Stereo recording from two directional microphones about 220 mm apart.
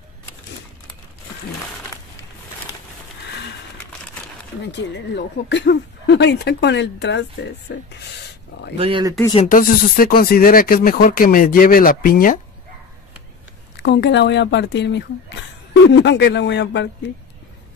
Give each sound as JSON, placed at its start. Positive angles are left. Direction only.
{"t": 4.6, "sound": "speech", "side_deg": 50}
{"t": 8.7, "sound": "speech", "side_deg": -25}
{"t": 9.3, "sound": "speech", "side_deg": 30}
{"t": 13.7, "sound": "speech", "side_deg": 50}